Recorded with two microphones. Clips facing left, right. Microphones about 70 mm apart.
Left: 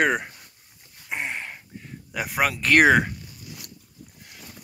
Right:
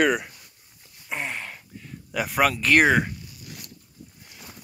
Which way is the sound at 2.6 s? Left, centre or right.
Left.